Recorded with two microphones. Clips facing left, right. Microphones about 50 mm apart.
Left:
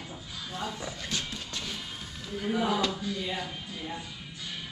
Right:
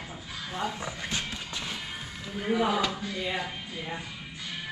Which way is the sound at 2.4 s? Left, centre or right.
Centre.